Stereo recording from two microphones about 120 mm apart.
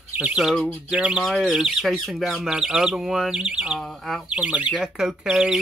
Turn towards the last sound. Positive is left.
turn(degrees=-5)  # may be behind; listen again after turning